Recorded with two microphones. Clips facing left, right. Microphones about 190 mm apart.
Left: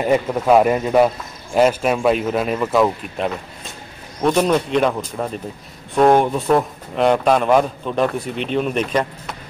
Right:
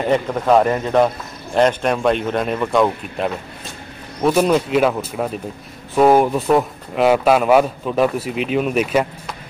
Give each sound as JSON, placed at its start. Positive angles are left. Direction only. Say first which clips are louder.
{"t": 0.0, "sound": "a man's voice", "louder": "left 1 dB", "side_deg": 10}